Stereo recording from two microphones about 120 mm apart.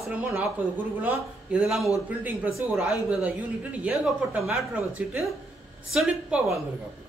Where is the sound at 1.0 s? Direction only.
15° right (ahead or behind).